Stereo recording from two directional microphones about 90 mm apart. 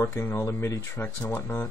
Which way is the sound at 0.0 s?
25° left (ahead or behind).